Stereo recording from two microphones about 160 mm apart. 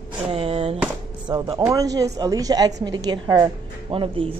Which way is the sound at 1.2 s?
25° right (ahead or behind).